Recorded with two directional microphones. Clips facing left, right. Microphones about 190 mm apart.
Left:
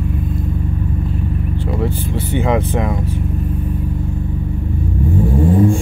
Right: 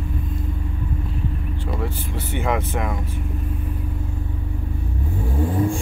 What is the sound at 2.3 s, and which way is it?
Speech, 30° left (ahead or behind).